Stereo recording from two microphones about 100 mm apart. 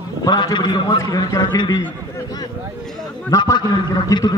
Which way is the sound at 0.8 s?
35° left (ahead or behind).